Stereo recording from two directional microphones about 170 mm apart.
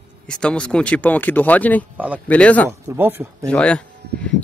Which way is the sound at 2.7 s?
15° right (ahead or behind).